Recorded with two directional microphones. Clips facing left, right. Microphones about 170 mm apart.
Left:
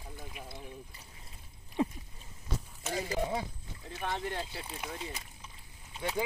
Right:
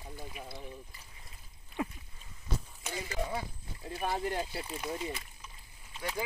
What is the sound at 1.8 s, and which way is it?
Speech, 25° left (ahead or behind).